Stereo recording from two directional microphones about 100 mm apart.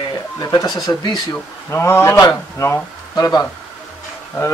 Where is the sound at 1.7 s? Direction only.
25° left (ahead or behind).